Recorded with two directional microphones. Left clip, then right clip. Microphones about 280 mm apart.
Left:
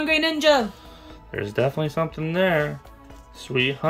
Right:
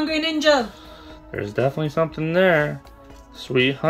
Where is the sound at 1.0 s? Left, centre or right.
Centre.